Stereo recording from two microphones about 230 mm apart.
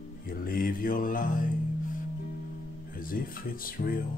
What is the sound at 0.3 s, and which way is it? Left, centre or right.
Music, left.